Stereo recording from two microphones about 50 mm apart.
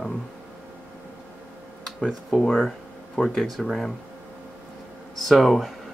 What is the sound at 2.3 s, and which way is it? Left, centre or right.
Speech, centre.